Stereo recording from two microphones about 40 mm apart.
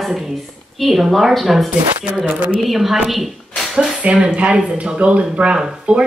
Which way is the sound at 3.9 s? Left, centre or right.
Right.